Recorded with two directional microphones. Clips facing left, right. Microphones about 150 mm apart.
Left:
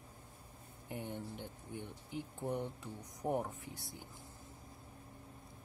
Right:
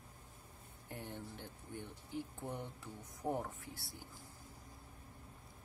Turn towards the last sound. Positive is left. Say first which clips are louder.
# left 3 dB
turn(degrees=20)  # may be behind; listen again after turning